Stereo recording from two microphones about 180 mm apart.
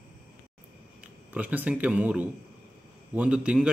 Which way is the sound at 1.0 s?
10° right (ahead or behind).